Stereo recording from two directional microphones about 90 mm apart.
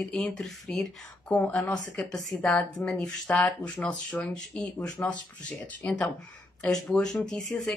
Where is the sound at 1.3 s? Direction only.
15° left (ahead or behind).